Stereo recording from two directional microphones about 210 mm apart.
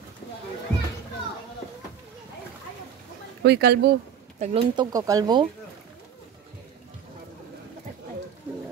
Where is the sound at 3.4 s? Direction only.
50° right (ahead or behind).